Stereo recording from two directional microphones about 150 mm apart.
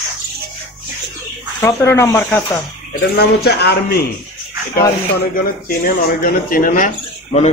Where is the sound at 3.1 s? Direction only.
90° left.